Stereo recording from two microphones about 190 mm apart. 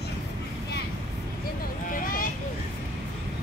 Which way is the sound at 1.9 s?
45° left (ahead or behind).